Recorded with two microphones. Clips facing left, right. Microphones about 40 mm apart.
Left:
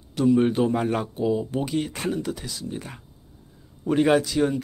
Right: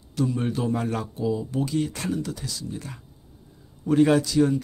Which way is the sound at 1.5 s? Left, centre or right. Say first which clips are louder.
Even; left.